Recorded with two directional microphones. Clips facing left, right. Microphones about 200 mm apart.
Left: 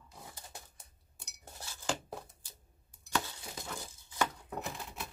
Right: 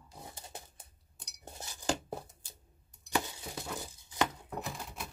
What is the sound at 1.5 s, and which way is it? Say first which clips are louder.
Dishes: right 1 dB; 15° right (ahead or behind).